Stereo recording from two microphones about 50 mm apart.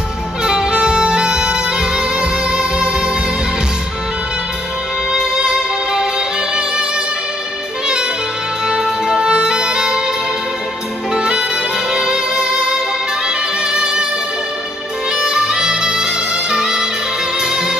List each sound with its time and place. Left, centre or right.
0.4 s music: centre
5.1 s music: centre
7.8 s saxophone: centre
8.6 s music: centre
11.1 s saxophone: centre
11.9 s music: centre
15.0 s music: centre